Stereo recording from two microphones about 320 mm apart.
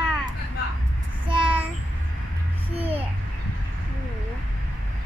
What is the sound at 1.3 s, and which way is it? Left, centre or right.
Child singing, centre.